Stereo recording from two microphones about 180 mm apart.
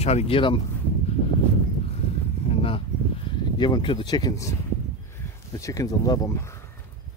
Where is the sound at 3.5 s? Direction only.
25° left (ahead or behind).